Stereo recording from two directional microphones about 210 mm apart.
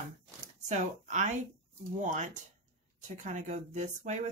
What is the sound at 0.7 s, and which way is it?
A woman's voice, 35° right (ahead or behind).